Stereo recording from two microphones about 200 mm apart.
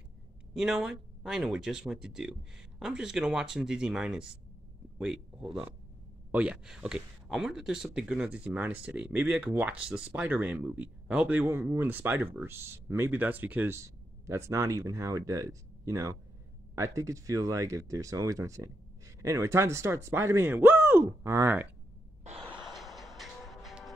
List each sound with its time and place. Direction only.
0.6 s a man's voice: centre (ahead or behind)
22.2 s gasp: 30° right (ahead or behind)
22.6 s music: centre (ahead or behind)